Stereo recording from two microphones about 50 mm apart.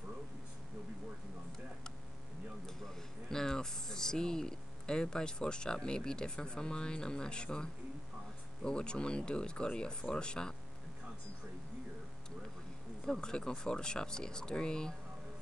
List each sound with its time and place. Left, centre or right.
3.3 s speech: centre
13.0 s speech: centre